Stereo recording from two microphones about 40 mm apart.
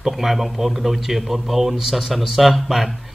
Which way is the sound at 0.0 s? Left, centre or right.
Centre.